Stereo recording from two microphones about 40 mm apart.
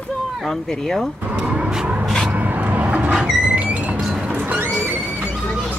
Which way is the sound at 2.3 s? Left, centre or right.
Right.